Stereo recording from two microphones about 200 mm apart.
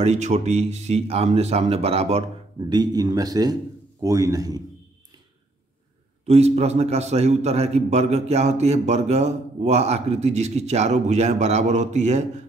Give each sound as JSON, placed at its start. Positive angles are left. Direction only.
{"t": 0.0, "sound": "a man's voice", "side_deg": -35}
{"t": 6.2, "sound": "a man's voice", "side_deg": -30}